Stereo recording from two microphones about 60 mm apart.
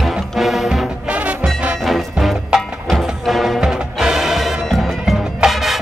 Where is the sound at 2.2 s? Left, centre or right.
Centre.